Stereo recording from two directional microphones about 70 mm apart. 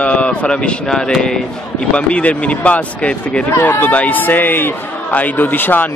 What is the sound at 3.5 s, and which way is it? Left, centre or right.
Speech, left.